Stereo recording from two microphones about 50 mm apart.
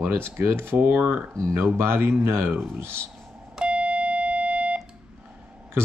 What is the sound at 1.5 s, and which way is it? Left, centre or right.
Speech, right.